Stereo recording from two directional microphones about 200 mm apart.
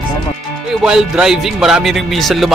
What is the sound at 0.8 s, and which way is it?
Speech, 5° right (ahead or behind).